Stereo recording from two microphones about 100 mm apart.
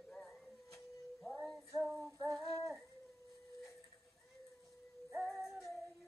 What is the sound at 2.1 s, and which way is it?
Synthetic singing, 35° right (ahead or behind).